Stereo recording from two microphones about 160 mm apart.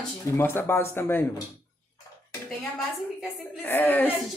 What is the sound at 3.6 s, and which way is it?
Speech, 10° left (ahead or behind).